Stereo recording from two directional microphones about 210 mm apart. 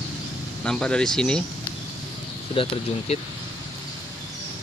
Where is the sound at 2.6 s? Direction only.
30° left (ahead or behind).